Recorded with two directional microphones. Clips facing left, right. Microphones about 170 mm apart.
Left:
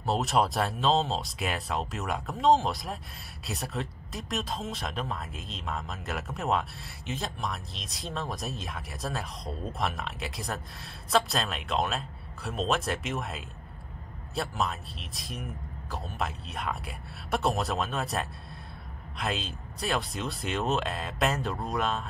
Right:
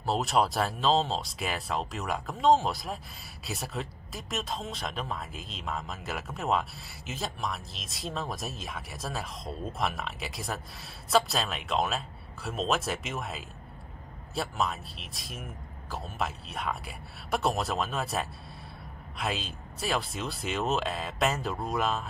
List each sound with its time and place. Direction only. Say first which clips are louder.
0.0 s speech: even; centre (ahead or behind)